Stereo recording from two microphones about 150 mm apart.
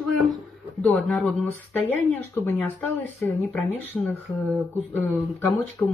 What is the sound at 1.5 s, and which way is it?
A woman's voice, 15° left (ahead or behind).